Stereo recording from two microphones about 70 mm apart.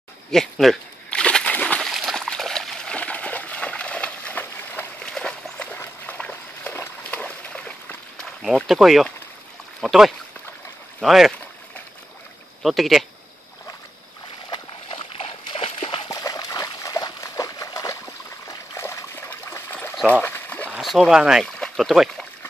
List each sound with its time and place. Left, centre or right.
0.3 s speech: centre
1.1 s a sound: centre
1.8 s dog: centre
2.1 s splash: centre
3.0 s a sound: centre
5.0 s walk: centre
6.0 s a sound: centre
8.6 s speech: centre
12.6 s speech: centre
16.1 s trickle: left
18.8 s stream: left
19.7 s trickle: left
20.1 s a sound: left
20.8 s speech: centre